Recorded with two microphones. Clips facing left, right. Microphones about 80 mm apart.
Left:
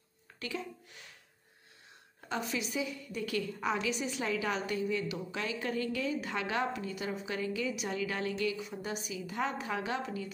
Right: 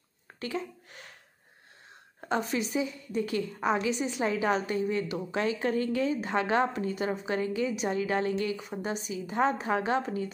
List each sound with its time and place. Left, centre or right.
0.4 s speech: right
2.2 s a woman's voice: right